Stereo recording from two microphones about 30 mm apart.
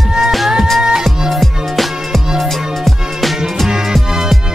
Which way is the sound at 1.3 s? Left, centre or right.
Centre.